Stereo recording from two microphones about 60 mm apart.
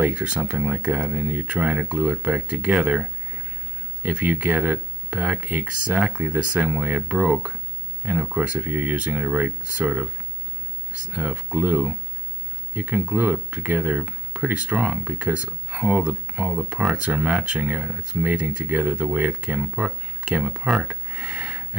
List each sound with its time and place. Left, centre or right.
0.0 s speech: centre
11.1 s speech: right
20.8 s a sound: right